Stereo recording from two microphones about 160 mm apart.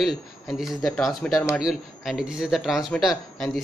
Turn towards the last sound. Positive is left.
turn(degrees=0)  # may be behind; listen again after turning